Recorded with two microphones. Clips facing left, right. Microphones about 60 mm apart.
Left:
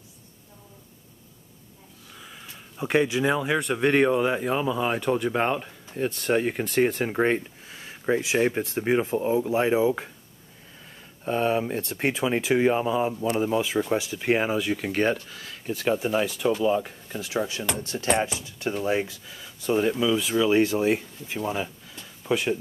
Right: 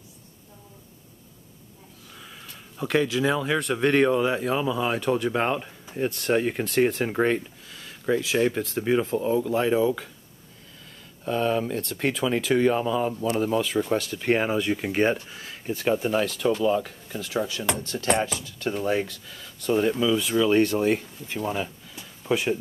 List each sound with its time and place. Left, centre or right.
2.1 s a sound: centre
3.3 s speech: centre
7.6 s speech: left
11.2 s speech: left
18.7 s speech: centre
22.0 s a sound: centre